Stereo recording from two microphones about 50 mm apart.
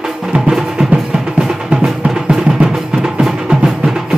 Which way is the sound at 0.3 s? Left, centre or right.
Centre.